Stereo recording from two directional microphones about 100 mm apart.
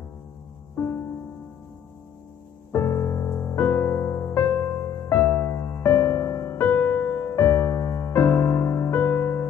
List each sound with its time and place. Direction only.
0.7 s music: 25° left (ahead or behind)
2.7 s music: 25° left (ahead or behind)